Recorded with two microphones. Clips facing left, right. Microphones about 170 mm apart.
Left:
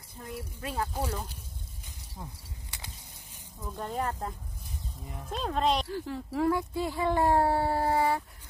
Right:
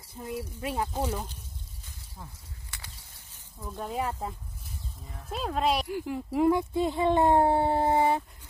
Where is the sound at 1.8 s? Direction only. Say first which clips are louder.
Left 4 dB; 15° left (ahead or behind).